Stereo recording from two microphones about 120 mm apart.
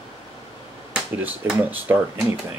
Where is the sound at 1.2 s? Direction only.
15° right (ahead or behind).